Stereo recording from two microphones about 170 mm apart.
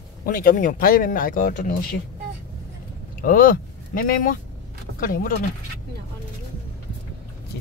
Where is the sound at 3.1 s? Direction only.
55° left (ahead or behind).